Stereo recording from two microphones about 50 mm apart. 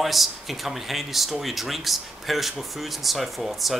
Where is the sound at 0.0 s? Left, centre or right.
Centre.